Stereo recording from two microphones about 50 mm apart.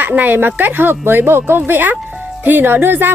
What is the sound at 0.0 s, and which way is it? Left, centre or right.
Speech, right.